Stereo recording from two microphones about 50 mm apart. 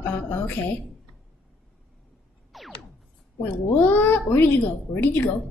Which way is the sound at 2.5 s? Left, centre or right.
Centre.